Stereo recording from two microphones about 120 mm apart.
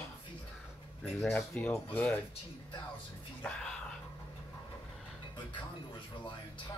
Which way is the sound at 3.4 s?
5° left (ahead or behind).